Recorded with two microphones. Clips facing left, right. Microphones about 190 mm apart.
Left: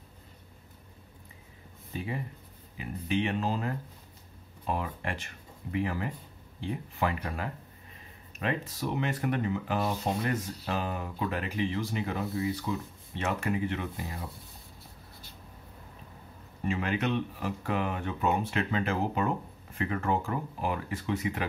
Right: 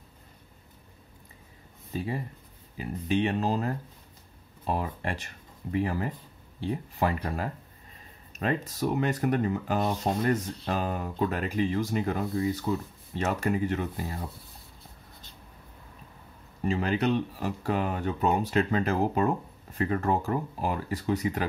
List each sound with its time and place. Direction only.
2.0 s speech: 35° right (ahead or behind)
16.6 s speech: 35° right (ahead or behind)